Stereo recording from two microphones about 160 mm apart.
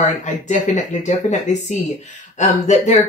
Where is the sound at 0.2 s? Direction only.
50° left (ahead or behind).